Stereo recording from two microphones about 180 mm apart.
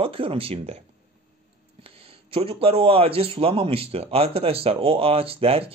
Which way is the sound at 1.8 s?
30° right (ahead or behind).